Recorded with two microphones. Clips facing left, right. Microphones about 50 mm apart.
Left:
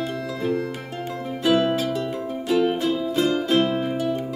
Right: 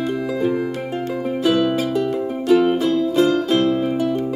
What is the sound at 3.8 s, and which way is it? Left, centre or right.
Music, centre.